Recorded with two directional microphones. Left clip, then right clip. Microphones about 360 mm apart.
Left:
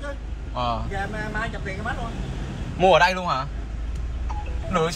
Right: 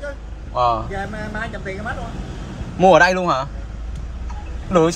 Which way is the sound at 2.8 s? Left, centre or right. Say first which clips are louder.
Right 5 dB; centre.